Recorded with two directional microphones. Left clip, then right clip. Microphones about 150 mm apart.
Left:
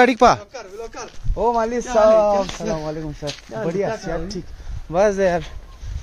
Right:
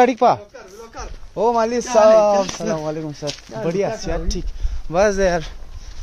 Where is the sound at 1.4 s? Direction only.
15° right (ahead or behind).